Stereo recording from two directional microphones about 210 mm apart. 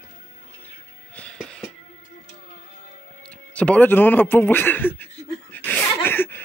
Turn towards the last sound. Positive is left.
turn(degrees=10)  # may be behind; listen again after turning